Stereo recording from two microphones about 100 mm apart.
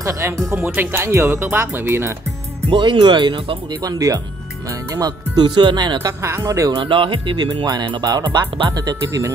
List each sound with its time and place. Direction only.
0.0 s speech: 30° right (ahead or behind)
2.7 s speech: 55° right (ahead or behind)
3.8 s speech: 40° right (ahead or behind)
6.2 s speech: 30° right (ahead or behind)
6.8 s speech: 55° right (ahead or behind); by 9.2 s 40° right (ahead or behind)